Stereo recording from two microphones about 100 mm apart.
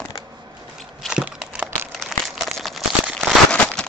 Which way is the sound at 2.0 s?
Centre (ahead or behind).